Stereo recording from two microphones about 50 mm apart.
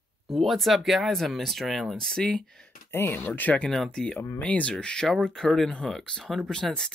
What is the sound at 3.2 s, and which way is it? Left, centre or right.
Speech, left.